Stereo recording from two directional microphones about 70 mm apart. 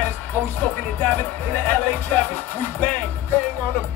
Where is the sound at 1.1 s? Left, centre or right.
Left.